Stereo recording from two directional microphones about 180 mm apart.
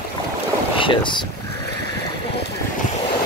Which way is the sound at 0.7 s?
25° left (ahead or behind).